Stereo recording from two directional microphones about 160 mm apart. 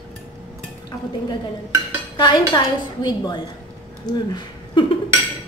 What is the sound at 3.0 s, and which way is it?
A woman's voice, 25° left (ahead or behind).